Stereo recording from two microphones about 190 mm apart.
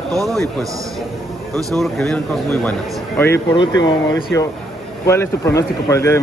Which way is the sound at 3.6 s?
20° left (ahead or behind).